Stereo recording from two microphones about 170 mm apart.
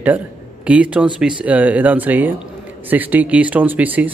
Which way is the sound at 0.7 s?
5° right (ahead or behind).